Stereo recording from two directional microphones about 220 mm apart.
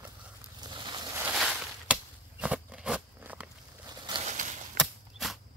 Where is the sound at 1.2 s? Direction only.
5° right (ahead or behind).